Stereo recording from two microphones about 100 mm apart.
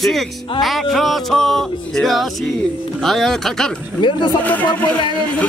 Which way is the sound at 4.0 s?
55° left (ahead or behind).